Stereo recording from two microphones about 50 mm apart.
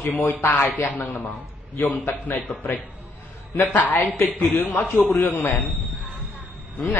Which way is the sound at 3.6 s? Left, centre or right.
Left.